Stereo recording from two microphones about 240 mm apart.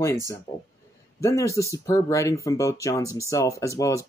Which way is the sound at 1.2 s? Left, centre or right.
Centre.